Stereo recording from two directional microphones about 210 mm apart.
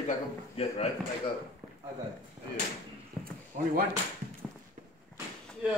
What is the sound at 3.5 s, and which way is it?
Speech, 35° right (ahead or behind).